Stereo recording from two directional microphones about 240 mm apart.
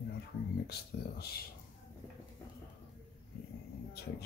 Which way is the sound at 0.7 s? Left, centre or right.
Left.